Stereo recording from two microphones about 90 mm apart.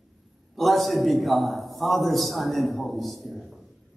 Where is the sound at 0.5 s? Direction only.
Centre (ahead or behind).